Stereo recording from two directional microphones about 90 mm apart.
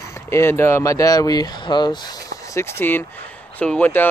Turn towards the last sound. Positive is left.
turn(degrees=20)  # may be behind; listen again after turning